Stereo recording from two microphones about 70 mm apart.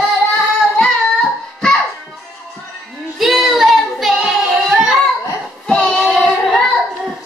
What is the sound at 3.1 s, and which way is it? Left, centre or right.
Child singing, centre.